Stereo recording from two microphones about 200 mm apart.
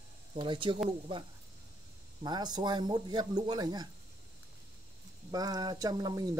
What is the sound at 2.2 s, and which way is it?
Speech, 20° right (ahead or behind).